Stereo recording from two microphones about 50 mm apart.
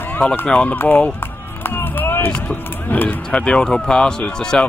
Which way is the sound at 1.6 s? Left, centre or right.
Left.